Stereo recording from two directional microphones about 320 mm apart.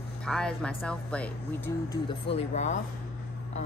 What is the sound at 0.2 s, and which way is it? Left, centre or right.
Speech, centre.